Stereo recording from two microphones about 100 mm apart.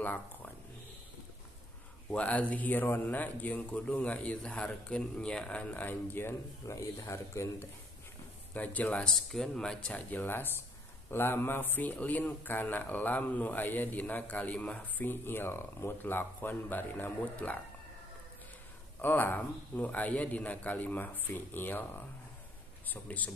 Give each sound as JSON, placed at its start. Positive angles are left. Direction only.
{"t": 2.0, "sound": "speech", "side_deg": 15}
{"t": 8.5, "sound": "speech", "side_deg": 15}
{"t": 9.1, "sound": "a man's voice", "side_deg": 5}
{"t": 18.9, "sound": "a man's voice", "side_deg": 20}